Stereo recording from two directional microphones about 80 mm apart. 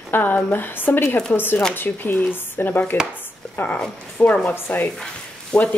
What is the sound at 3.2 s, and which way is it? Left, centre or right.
Chopping, left.